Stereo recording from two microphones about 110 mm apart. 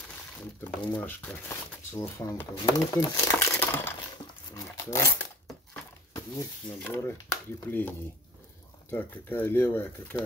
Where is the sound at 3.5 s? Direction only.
20° left (ahead or behind).